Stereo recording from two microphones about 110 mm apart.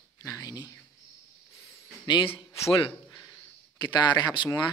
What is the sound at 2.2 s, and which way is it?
Speech, 20° left (ahead or behind).